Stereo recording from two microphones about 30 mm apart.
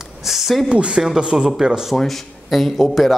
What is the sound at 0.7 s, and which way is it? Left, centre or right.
Speech, right.